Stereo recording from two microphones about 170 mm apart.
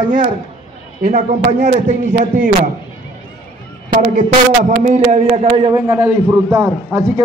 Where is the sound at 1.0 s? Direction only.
45° right (ahead or behind).